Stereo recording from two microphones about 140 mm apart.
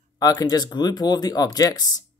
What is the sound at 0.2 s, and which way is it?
Speech, 25° left (ahead or behind).